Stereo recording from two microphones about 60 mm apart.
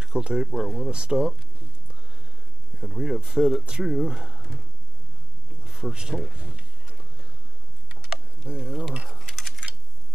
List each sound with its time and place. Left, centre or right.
0.0 s speech: centre
2.8 s speech: centre
5.6 s speech: centre
6.3 s tick-tock: centre
8.5 s speech: centre
9.2 s a sound: centre